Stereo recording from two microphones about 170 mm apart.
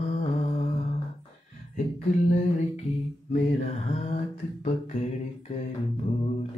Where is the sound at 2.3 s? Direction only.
45° left (ahead or behind).